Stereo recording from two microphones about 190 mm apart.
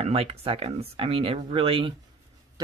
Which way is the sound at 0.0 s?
30° right (ahead or behind).